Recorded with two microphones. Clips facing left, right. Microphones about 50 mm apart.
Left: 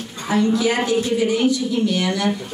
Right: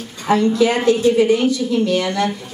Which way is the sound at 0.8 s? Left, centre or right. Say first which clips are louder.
Right 6 dB; right.